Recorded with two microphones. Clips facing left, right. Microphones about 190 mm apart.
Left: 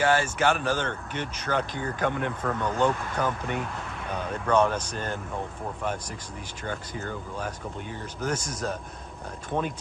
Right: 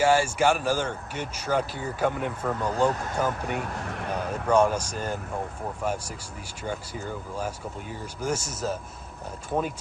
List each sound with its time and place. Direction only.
0.0 s speech: 10° right (ahead or behind)
2.6 s speech: 35° right (ahead or behind)
3.2 s speech: 10° right (ahead or behind)
3.5 s speech: 60° right (ahead or behind)
4.1 s speech: 10° right (ahead or behind)
6.6 s speech: 10° right (ahead or behind)